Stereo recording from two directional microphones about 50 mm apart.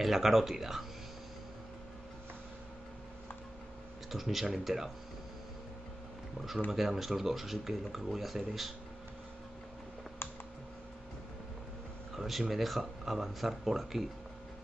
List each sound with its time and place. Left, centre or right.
0.0 s speech: centre
4.1 s speech: centre
6.7 s speech: centre
12.2 s speech: centre